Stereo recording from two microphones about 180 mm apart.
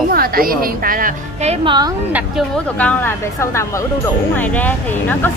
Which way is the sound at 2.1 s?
10° right (ahead or behind).